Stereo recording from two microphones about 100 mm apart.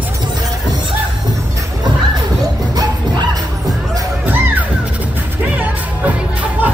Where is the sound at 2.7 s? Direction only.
40° right (ahead or behind).